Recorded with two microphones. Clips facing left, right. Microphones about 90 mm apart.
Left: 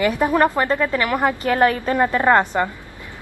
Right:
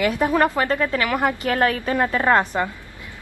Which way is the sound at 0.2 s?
15° left (ahead or behind).